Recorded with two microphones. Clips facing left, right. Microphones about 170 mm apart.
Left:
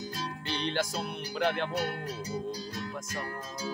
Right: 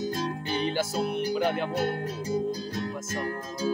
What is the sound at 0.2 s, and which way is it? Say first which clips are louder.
Music: right 6 dB; 45° right (ahead or behind).